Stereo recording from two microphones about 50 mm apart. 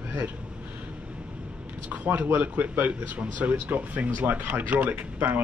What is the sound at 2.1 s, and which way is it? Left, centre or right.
Speech, right.